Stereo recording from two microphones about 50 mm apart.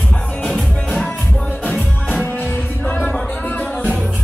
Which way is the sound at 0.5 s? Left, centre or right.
Left.